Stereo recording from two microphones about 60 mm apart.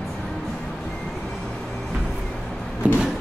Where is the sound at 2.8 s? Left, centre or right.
Right.